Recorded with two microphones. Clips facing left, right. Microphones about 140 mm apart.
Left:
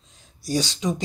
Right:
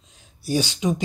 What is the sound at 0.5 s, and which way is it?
Speech, 10° right (ahead or behind).